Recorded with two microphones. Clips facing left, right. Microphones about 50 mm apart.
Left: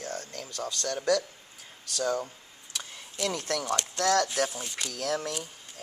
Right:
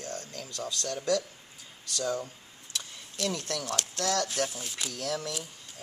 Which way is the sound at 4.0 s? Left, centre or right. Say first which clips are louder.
Left 5 dB; left.